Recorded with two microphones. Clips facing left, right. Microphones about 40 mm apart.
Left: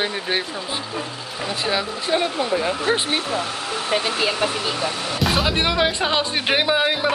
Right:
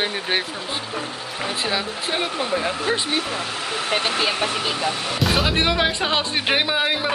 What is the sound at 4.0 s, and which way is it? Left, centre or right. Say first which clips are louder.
Speech: even; right.